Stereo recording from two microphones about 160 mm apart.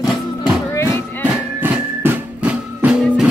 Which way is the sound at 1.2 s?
10° right (ahead or behind).